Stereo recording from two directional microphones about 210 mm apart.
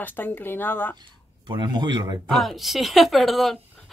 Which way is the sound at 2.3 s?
Centre (ahead or behind).